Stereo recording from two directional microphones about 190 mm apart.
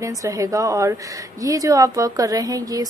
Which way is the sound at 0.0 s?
15° right (ahead or behind).